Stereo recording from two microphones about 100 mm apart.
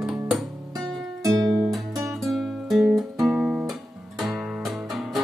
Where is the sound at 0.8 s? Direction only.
35° right (ahead or behind).